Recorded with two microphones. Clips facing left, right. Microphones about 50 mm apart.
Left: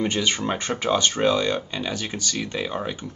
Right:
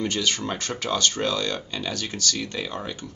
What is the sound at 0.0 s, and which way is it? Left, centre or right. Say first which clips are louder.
Speech: left 2 dB; left.